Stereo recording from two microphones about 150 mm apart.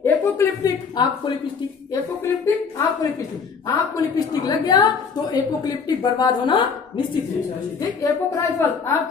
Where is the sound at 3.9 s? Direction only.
25° left (ahead or behind).